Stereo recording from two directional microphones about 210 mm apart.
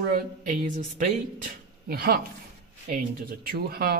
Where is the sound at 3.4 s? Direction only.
45° right (ahead or behind).